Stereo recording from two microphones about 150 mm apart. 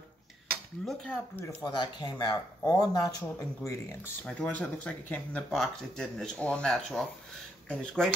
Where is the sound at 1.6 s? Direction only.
30° left (ahead or behind).